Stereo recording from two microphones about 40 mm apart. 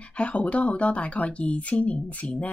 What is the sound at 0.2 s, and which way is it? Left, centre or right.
Speech, left.